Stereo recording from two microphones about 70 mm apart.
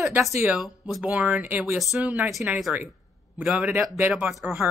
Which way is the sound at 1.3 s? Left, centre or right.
Right.